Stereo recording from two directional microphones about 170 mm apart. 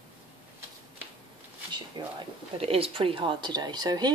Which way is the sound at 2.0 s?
25° right (ahead or behind).